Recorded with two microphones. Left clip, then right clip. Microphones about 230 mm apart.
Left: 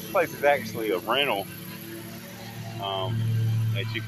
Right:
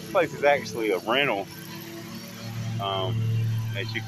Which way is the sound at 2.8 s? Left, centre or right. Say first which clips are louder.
Right 2 dB; centre.